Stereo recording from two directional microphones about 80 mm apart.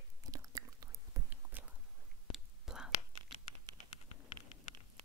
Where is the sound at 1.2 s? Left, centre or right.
Right.